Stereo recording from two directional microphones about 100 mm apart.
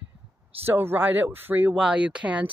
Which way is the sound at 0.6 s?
20° right (ahead or behind).